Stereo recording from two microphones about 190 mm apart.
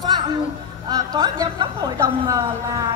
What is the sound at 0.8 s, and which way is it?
A woman's voice, 20° right (ahead or behind).